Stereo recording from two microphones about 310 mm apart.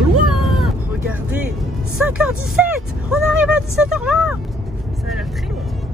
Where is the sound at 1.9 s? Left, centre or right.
Centre.